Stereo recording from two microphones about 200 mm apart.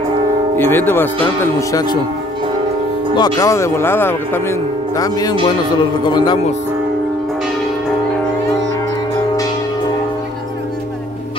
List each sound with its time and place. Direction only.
0.6 s speech: 10° left (ahead or behind)
3.2 s speech: 15° left (ahead or behind)